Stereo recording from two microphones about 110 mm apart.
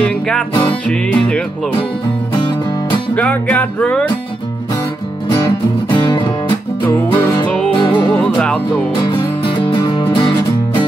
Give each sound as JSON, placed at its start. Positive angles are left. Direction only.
{"t": 0.0, "sound": "music", "side_deg": 10}
{"t": 2.3, "sound": "music", "side_deg": 40}
{"t": 3.2, "sound": "music", "side_deg": 15}
{"t": 6.0, "sound": "music", "side_deg": 45}
{"t": 7.7, "sound": "music", "side_deg": 45}
{"t": 8.2, "sound": "music", "side_deg": 5}
{"t": 8.9, "sound": "music", "side_deg": 45}